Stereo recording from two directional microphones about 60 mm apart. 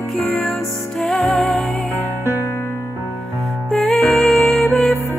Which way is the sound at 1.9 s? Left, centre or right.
Left.